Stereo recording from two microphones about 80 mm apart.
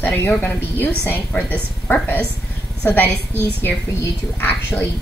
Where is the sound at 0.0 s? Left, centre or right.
Left.